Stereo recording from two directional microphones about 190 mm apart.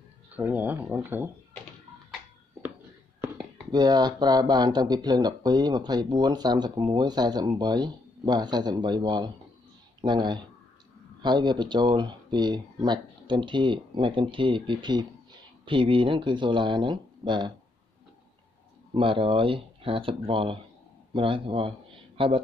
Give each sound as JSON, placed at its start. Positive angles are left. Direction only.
{"t": 0.3, "sound": "speech", "side_deg": -10}
{"t": 3.7, "sound": "speech", "side_deg": -20}
{"t": 18.9, "sound": "speech", "side_deg": -30}